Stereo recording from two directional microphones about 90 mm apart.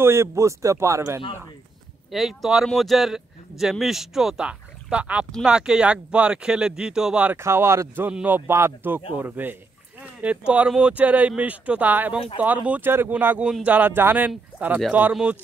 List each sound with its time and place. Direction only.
0.0 s speech: 30° right (ahead or behind)
2.0 s speech: centre (ahead or behind)
7.3 s speech: 30° right (ahead or behind)
8.1 s speech: 15° right (ahead or behind)
8.5 s speech: 30° right (ahead or behind)
13.4 s speech: 10° right (ahead or behind)
13.7 s speech: 20° right (ahead or behind)